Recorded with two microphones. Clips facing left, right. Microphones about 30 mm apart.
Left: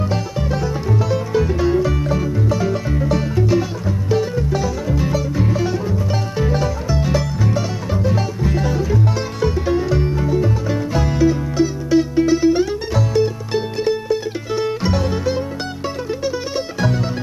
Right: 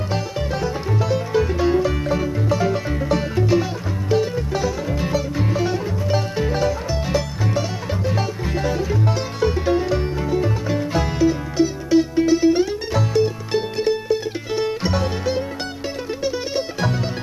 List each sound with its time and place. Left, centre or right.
0.1 s music: centre
11.1 s music: centre
13.1 s music: centre